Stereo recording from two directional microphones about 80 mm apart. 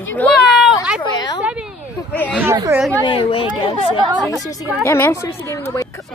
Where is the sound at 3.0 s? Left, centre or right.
Left.